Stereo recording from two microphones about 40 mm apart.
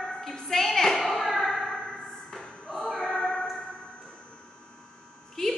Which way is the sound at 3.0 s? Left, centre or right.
Left.